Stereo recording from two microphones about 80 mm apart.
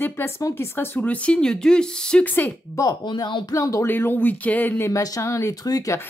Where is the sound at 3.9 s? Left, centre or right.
Left.